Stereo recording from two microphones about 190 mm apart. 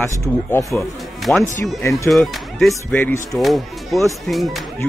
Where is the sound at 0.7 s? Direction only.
Centre (ahead or behind).